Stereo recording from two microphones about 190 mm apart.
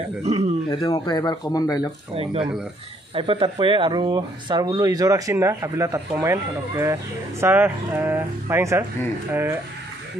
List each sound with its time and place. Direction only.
0.2 s speech: 35° right (ahead or behind)
0.7 s speech: 25° left (ahead or behind)
3.2 s speech: 30° right (ahead or behind); by 9.6 s 10° right (ahead or behind)